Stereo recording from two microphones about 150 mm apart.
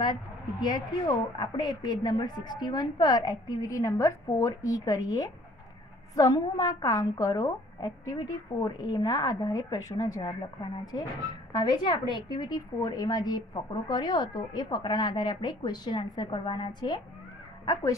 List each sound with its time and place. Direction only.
0.0 s a woman's voice: 30° left (ahead or behind)